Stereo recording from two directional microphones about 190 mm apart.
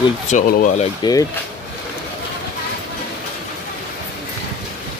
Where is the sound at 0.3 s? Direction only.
45° left (ahead or behind).